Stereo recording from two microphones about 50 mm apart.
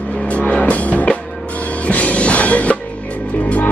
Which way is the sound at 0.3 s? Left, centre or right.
Left.